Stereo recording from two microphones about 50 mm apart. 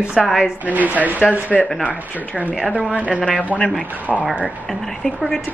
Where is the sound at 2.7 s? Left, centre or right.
Right.